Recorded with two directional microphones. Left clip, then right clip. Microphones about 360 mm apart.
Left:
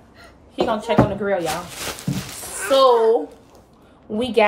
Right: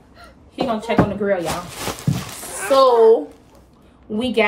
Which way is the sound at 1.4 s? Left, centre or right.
Centre.